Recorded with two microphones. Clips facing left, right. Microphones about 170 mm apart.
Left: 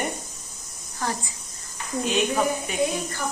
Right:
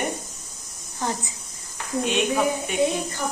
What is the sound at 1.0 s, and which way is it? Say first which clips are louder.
Speech: right 1 dB; 20° right (ahead or behind).